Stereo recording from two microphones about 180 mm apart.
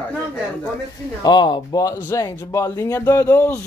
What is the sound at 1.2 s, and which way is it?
A man's voice, 25° left (ahead or behind).